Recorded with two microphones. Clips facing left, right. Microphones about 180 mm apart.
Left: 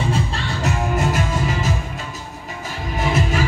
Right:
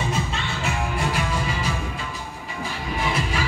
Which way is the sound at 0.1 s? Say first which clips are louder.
Left 4 dB; 40° left (ahead or behind).